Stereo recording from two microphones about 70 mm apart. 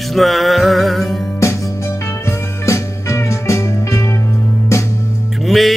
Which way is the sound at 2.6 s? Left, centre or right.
Left.